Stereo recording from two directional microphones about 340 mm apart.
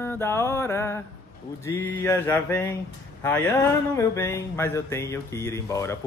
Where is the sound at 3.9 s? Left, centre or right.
Centre.